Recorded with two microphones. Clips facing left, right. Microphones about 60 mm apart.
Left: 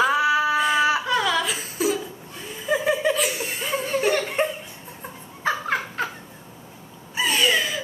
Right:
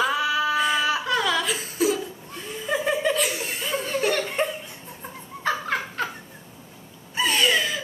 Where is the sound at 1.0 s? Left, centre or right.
Centre.